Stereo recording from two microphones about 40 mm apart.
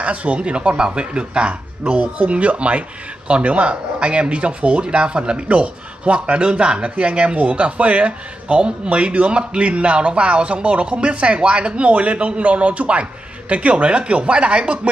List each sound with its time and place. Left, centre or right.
0.0 s speech: right